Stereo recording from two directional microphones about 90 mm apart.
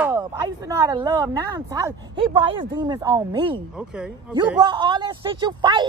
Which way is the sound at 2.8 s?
45° right (ahead or behind).